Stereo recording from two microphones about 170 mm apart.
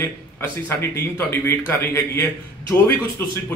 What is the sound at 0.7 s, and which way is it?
Speech, 15° left (ahead or behind).